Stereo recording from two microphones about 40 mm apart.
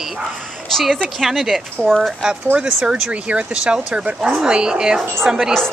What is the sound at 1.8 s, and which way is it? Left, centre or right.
Speech, centre.